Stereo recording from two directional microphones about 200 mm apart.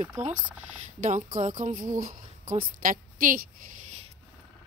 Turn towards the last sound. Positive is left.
turn(degrees=-45)  # may be behind; listen again after turning